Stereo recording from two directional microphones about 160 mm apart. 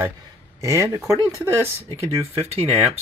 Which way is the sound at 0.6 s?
20° right (ahead or behind).